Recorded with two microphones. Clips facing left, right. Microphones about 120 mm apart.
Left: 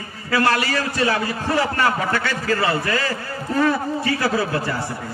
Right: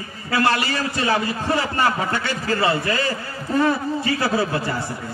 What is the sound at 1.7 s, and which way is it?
A man's voice, 25° right (ahead or behind).